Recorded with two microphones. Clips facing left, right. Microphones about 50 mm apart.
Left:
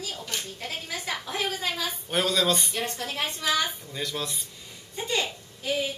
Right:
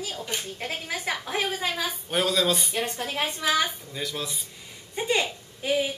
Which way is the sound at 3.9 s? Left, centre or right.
Centre.